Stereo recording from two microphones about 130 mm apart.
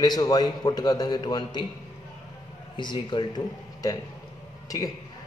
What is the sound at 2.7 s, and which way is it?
Speech, 35° left (ahead or behind).